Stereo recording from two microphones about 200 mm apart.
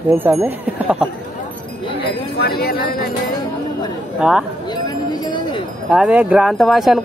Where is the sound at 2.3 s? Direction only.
50° left (ahead or behind).